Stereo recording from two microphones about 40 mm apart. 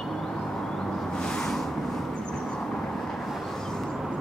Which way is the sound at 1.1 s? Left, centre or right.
Centre.